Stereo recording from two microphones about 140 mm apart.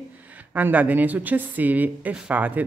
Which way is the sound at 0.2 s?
10° right (ahead or behind).